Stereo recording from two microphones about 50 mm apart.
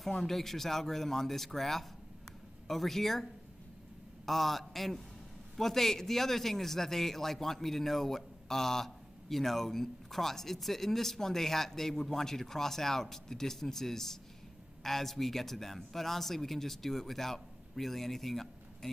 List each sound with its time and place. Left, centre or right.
0.0 s speech: centre
4.3 s a man's voice: centre